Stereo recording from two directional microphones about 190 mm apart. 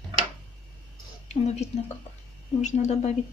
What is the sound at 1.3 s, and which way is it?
Speech, 35° left (ahead or behind).